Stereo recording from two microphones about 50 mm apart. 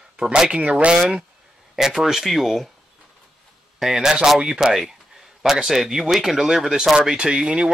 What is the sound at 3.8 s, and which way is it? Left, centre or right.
Speech, centre.